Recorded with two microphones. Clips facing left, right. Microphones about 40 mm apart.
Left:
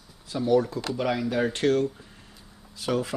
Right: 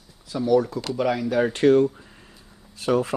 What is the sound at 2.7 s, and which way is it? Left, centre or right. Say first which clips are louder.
Speech: right 5 dB; right.